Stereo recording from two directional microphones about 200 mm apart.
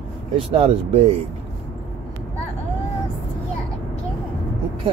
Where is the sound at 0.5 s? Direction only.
30° right (ahead or behind).